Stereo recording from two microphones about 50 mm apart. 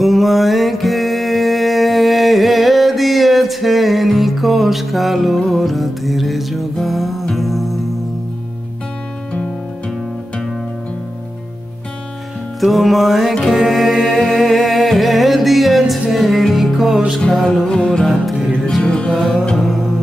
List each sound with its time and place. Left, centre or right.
0.0 s music: centre
5.4 s music: centre
5.7 s music: centre
9.8 s music: centre
12.5 s music: centre
18.9 s music: centre
19.1 s music: centre